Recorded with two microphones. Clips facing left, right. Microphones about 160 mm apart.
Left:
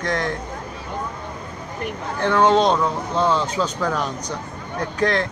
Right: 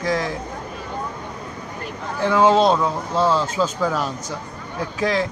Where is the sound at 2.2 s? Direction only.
5° right (ahead or behind).